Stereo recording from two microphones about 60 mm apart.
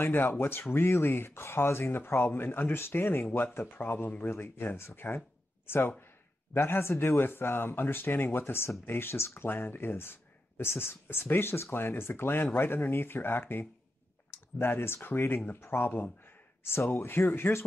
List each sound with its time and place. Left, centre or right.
0.0 s speech: left
16.6 s speech: left